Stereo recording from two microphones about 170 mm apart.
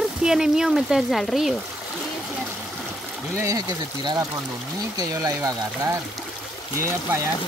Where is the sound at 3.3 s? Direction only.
20° right (ahead or behind).